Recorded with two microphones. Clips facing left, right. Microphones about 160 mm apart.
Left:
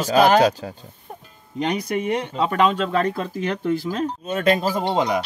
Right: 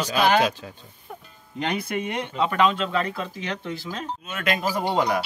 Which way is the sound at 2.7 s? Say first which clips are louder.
Left 4 dB; 45° left (ahead or behind).